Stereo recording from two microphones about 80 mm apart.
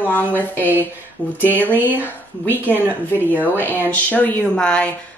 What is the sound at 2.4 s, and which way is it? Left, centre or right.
A woman's voice, left.